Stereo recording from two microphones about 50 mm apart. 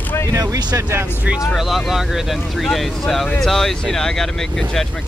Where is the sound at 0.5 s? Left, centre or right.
Right.